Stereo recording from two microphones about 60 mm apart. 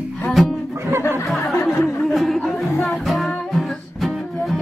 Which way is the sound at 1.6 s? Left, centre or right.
Left.